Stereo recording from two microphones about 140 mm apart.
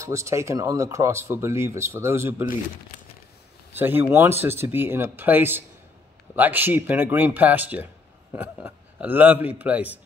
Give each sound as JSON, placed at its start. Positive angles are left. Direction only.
{"t": 0.0, "sound": "speech", "side_deg": -20}
{"t": 3.7, "sound": "speech", "side_deg": -15}